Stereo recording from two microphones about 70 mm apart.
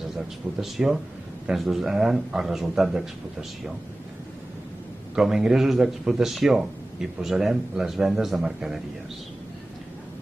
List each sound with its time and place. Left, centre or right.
0.6 s a man's voice: centre
5.1 s a man's voice: centre